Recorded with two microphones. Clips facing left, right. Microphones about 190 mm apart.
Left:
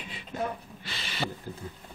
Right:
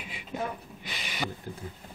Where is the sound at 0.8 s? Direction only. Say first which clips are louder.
Left 1 dB; 15° right (ahead or behind).